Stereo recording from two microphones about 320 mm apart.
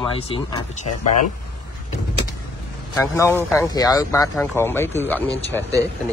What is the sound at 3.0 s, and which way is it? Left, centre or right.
Speech, centre.